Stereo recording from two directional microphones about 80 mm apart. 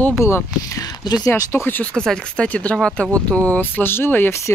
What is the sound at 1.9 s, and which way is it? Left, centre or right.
Speech, centre.